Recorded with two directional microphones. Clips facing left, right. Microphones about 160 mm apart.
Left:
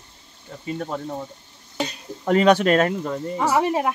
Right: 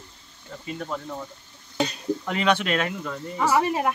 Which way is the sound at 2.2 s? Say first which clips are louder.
Left 9 dB; 40° left (ahead or behind).